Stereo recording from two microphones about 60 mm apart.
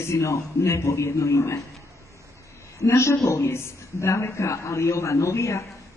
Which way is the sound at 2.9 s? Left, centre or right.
Left.